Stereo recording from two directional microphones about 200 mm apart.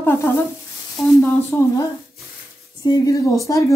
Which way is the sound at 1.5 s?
10° left (ahead or behind).